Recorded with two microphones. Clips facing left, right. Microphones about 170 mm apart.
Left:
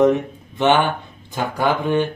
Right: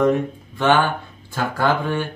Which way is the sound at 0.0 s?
20° left (ahead or behind).